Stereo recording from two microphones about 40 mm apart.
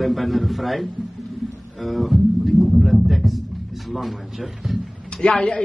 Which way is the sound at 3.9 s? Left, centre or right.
Centre.